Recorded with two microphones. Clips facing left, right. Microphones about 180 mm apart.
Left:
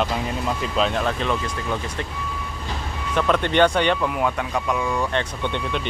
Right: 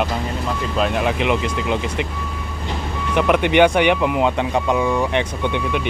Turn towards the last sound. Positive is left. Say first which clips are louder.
# right 4 dB
turn(degrees=-10)  # may be behind; listen again after turning